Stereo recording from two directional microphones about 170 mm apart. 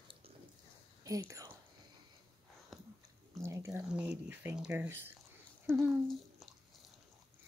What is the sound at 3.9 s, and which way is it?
Speech, 5° right (ahead or behind).